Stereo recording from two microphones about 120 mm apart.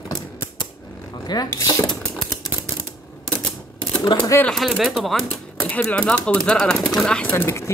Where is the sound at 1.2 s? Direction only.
35° left (ahead or behind).